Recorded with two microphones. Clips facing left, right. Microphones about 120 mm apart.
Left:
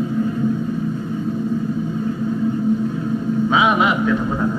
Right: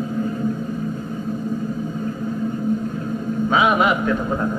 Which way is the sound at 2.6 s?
5° left (ahead or behind).